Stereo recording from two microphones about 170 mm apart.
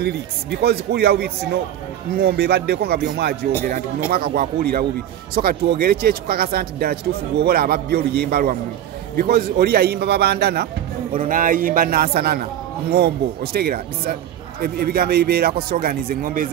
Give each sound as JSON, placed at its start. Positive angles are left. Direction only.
{"t": 0.0, "sound": "a man's voice", "side_deg": -75}
{"t": 4.1, "sound": "a man's voice", "side_deg": -60}
{"t": 11.1, "sound": "a man's voice", "side_deg": -55}